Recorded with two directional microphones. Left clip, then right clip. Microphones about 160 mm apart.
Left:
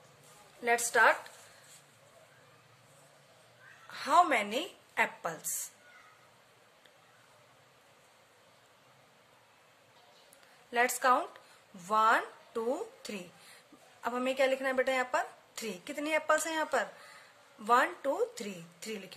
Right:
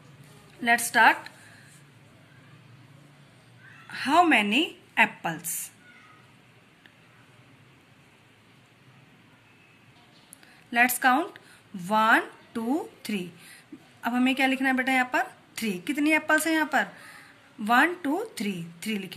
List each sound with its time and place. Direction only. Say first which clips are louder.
0.6 s a woman's voice: right 6 dB; 40° left (ahead or behind)
3.9 s speech: right 5 dB; 40° left (ahead or behind)
10.7 s a woman's voice: right 6 dB; 40° left (ahead or behind)